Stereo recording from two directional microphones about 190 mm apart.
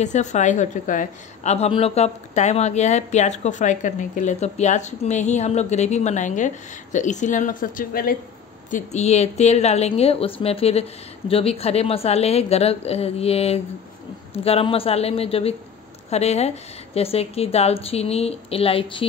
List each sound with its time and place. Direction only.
0.0 s a woman's voice: 40° left (ahead or behind)
8.6 s a woman's voice: 40° left (ahead or behind)